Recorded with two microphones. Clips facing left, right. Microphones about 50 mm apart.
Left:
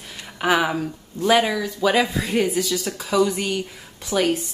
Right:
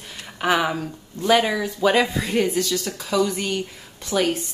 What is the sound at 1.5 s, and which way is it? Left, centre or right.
A woman's voice, centre.